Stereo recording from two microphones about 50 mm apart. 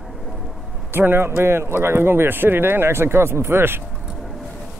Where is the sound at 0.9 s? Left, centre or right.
Right.